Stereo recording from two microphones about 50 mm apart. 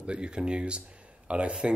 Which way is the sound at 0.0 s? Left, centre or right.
Right.